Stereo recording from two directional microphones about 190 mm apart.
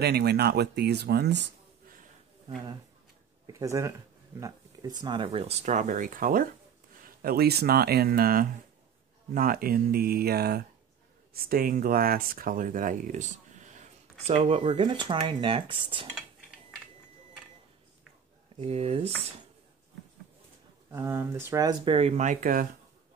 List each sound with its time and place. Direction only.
0.0 s speech: 60° right (ahead or behind)
3.4 s speech: 15° right (ahead or behind)
15.0 s cutlery: 25° right (ahead or behind)
18.6 s speech: 35° right (ahead or behind)
20.9 s speech: 10° right (ahead or behind)
21.9 s speech: 35° right (ahead or behind)